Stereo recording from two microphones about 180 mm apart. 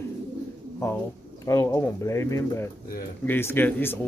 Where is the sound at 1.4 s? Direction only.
15° left (ahead or behind).